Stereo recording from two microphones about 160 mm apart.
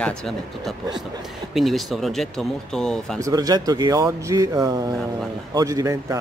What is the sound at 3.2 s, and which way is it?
Speech, 20° right (ahead or behind).